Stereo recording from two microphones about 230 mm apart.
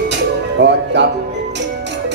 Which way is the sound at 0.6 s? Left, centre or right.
Right.